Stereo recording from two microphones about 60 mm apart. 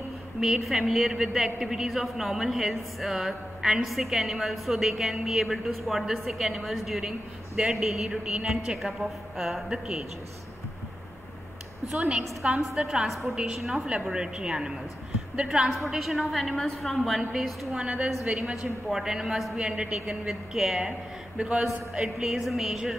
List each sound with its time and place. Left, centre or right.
0.7 s a woman's voice: centre
12.7 s a woman's voice: centre
15.7 s a woman's voice: centre
17.8 s a woman's voice: centre
19.5 s a woman's voice: centre
21.4 s a woman's voice: centre